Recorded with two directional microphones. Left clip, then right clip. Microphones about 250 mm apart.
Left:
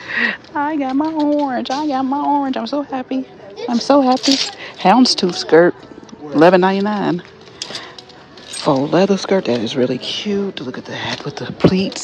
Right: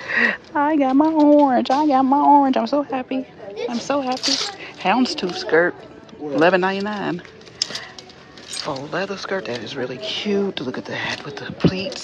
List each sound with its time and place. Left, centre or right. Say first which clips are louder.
0.0 s speech: even; centre
3.8 s speech: left 10 dB; centre
8.6 s speech: left 12 dB; left